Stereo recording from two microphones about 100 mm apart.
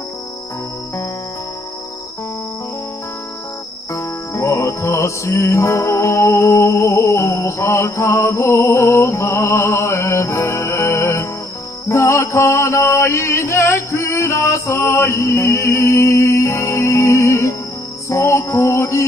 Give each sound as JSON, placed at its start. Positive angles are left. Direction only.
{"t": 3.9, "sound": "music", "side_deg": 30}
{"t": 11.9, "sound": "mantra", "side_deg": 30}
{"t": 18.1, "sound": "music", "side_deg": 30}